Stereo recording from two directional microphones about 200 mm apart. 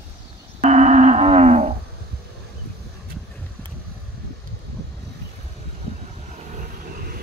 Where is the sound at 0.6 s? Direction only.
35° right (ahead or behind).